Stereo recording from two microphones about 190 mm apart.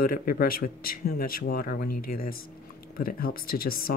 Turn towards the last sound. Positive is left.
turn(degrees=50)  # may be behind; listen again after turning